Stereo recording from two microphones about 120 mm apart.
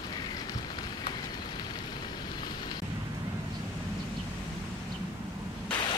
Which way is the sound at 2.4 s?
35° left (ahead or behind).